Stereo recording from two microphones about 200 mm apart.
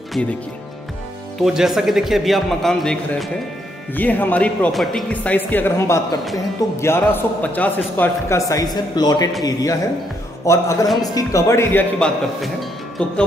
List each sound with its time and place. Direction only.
1.4 s a man's voice: centre (ahead or behind)